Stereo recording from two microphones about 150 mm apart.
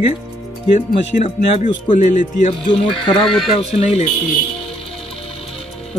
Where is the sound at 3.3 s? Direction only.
Centre (ahead or behind).